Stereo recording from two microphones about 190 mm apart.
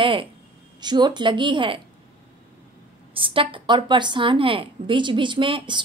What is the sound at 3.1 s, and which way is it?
A woman's voice, 25° right (ahead or behind).